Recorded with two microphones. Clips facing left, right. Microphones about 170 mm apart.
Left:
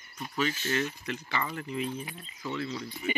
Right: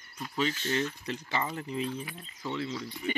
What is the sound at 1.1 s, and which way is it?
Speech, 25° right (ahead or behind).